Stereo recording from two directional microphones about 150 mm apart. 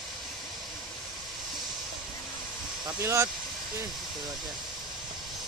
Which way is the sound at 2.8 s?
20° right (ahead or behind).